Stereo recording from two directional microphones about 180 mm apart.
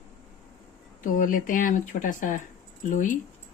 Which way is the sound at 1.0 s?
50° left (ahead or behind).